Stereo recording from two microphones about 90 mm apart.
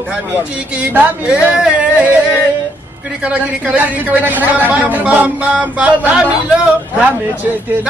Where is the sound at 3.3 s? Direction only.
15° right (ahead or behind).